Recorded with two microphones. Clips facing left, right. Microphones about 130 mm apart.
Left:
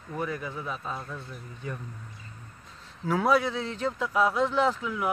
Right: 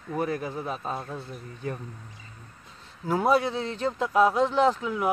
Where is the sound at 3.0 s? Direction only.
25° right (ahead or behind).